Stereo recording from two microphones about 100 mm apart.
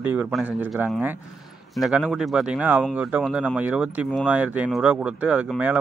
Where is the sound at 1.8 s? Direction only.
5° right (ahead or behind).